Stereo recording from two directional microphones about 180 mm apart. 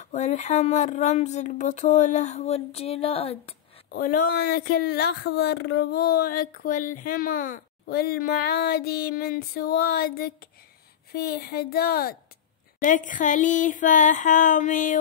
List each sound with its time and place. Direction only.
0.0 s speech: 40° left (ahead or behind)
3.9 s speech: 50° left (ahead or behind)
12.8 s a sound: 45° left (ahead or behind)